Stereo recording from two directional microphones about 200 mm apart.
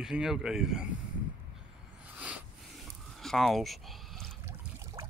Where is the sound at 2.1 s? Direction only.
5° right (ahead or behind).